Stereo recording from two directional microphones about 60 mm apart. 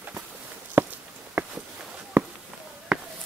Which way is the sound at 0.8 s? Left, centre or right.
Right.